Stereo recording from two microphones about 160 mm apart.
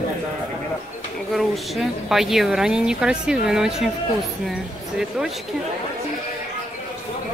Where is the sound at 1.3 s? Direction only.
Centre (ahead or behind).